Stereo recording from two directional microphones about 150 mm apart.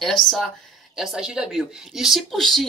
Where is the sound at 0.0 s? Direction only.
Centre (ahead or behind).